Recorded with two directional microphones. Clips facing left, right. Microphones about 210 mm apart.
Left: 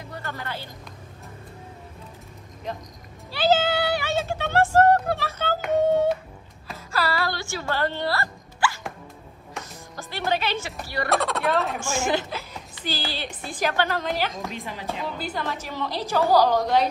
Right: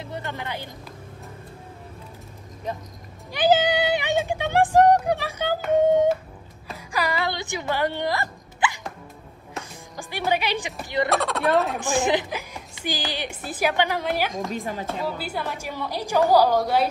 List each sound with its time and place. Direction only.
0.0 s music: 20° right (ahead or behind)
3.3 s meow: 15° right (ahead or behind)
5.8 s a woman's voice: 10° right (ahead or behind)
6.9 s a sound: 15° right (ahead or behind)
9.9 s a woman's voice: 15° right (ahead or behind)
11.1 s speech: centre (ahead or behind)
11.8 s a woman's voice: 15° right (ahead or behind)
14.5 s speech: 45° right (ahead or behind)
15.0 s a woman's voice: 10° right (ahead or behind)